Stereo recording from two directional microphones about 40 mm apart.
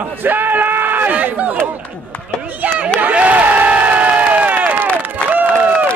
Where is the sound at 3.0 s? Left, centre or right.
Right.